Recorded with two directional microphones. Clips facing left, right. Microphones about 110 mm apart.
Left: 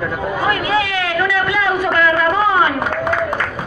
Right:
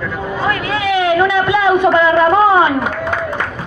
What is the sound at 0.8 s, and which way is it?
A woman's voice, 20° right (ahead or behind).